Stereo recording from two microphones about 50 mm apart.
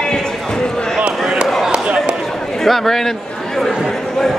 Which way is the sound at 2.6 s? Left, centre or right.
Centre.